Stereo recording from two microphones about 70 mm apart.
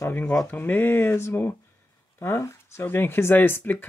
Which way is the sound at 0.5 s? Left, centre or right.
Left.